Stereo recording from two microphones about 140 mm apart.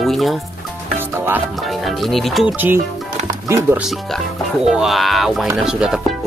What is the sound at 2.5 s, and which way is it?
Speech, 15° right (ahead or behind).